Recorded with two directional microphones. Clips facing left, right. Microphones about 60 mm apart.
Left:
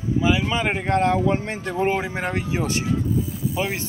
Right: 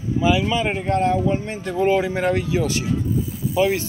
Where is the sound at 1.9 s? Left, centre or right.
Centre.